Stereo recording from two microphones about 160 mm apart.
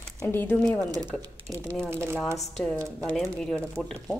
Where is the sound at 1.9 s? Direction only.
15° right (ahead or behind).